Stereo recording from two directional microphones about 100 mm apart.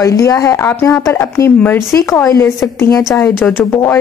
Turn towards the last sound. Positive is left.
turn(degrees=25)  # may be behind; listen again after turning